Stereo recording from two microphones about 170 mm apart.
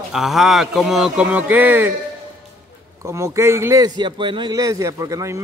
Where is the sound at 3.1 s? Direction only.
15° right (ahead or behind).